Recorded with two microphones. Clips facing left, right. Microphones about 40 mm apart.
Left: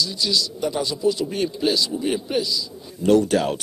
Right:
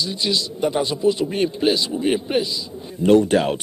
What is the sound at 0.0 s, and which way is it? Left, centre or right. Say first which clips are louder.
Speech: right 1 dB; right.